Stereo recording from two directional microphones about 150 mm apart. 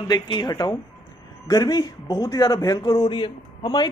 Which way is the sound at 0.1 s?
30° left (ahead or behind).